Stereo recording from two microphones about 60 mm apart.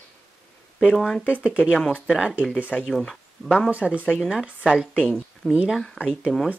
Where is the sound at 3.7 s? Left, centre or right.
Right.